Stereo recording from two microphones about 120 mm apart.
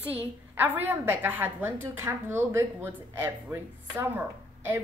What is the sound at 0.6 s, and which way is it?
A woman's voice, 15° right (ahead or behind).